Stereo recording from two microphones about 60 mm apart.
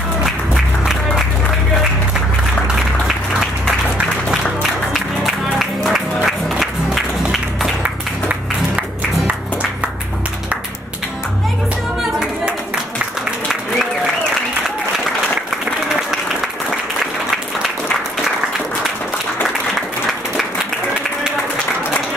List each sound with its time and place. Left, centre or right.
4.9 s music: centre